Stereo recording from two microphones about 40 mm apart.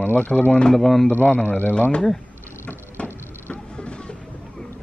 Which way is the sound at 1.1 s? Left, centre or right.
Left.